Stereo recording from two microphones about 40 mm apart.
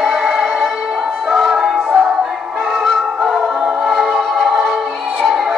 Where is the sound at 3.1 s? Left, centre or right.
Right.